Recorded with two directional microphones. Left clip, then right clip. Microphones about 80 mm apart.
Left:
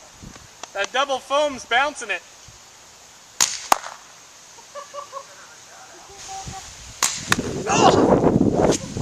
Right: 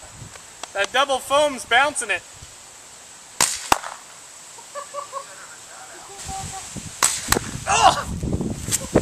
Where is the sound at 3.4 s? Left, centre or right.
Left.